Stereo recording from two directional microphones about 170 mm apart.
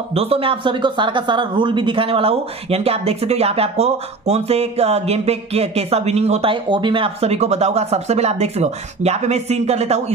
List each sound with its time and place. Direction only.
0.1 s speech: 35° right (ahead or behind)